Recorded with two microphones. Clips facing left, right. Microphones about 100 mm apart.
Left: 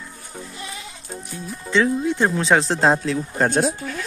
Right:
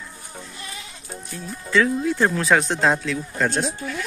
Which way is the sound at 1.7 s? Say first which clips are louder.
Even; 25° left (ahead or behind).